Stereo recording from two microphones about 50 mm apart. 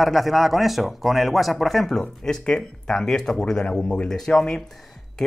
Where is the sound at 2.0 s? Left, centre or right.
Centre.